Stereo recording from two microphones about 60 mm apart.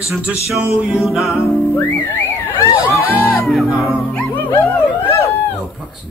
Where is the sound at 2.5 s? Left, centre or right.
Left.